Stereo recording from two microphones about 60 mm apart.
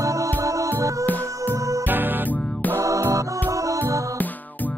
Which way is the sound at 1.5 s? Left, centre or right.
Right.